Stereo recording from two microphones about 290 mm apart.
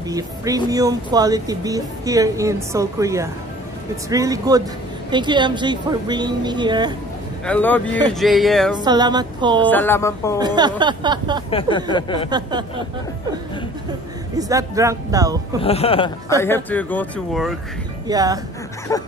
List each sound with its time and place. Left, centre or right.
0.1 s speech: centre
7.4 s speech: centre
8.7 s speech: centre
9.7 s speech: centre
10.4 s speech: centre
11.5 s speech: centre
12.3 s speech: centre
14.3 s speech: centre
15.6 s speech: centre
16.3 s speech: centre
18.0 s speech: centre
18.9 s speech: centre